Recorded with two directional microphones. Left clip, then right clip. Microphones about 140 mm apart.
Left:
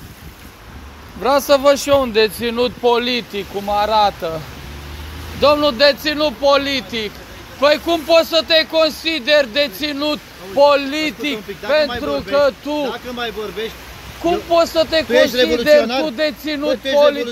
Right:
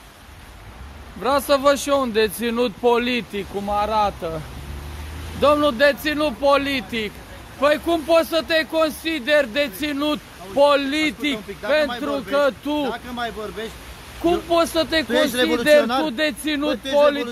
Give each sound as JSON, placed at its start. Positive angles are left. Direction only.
{"t": 1.5, "sound": "speech", "side_deg": -15}
{"t": 2.4, "sound": "speech", "side_deg": -40}
{"t": 5.4, "sound": "speech", "side_deg": -30}
{"t": 11.6, "sound": "speech", "side_deg": -15}
{"t": 12.0, "sound": "speech", "side_deg": -35}
{"t": 12.8, "sound": "speech", "side_deg": -20}
{"t": 14.2, "sound": "speech", "side_deg": -45}
{"t": 15.0, "sound": "speech", "side_deg": -30}
{"t": 16.1, "sound": "speech", "side_deg": -45}